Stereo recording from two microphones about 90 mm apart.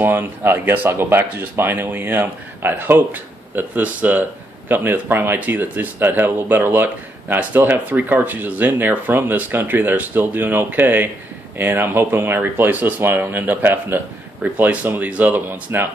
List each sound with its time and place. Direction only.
0.0 s speech: 25° right (ahead or behind)